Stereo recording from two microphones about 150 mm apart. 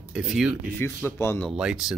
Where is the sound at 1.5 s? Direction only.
5° right (ahead or behind).